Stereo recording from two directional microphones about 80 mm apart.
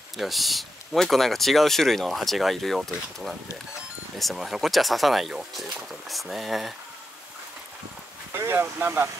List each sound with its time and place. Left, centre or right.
0.2 s speech: centre
8.3 s speech: right